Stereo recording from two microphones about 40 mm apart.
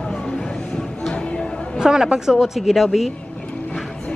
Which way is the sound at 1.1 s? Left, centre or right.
Left.